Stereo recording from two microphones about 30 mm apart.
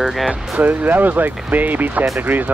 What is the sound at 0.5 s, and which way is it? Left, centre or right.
Speech, right.